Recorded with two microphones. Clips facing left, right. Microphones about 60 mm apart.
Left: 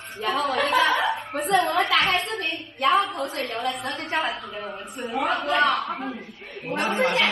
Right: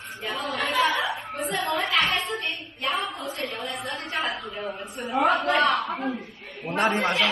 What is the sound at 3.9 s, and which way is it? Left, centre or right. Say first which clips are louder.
Speech: left 3 dB; left.